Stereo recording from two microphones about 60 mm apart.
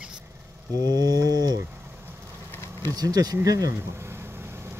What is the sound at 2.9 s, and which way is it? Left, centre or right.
Speech, right.